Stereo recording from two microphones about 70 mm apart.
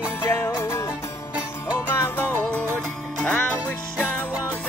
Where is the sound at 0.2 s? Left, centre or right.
Left.